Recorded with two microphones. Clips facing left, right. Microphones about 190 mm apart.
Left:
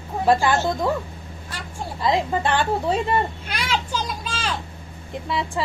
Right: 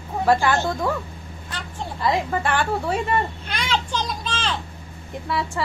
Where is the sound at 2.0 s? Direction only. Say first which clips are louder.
Left 1 dB; 20° left (ahead or behind).